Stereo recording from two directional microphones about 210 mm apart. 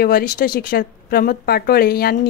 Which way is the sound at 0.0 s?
45° left (ahead or behind).